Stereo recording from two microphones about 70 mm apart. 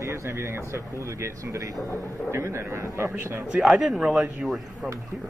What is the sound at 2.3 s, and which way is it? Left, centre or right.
A man's voice, right.